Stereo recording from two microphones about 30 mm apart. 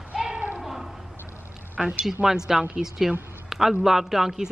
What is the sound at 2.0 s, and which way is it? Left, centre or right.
Speech, centre.